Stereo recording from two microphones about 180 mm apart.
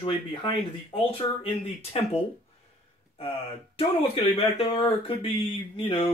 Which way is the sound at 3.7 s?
30° left (ahead or behind).